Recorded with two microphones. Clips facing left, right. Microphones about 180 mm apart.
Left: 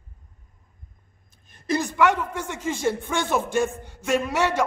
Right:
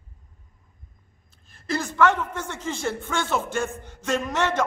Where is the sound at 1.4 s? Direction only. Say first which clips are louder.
Left 3 dB; 20° left (ahead or behind).